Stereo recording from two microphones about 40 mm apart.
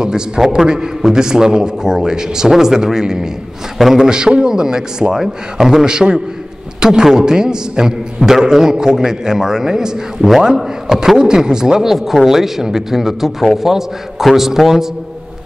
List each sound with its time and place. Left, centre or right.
0.0 s speech: centre
3.7 s a man's voice: centre
4.0 s speech: centre
10.5 s speech: centre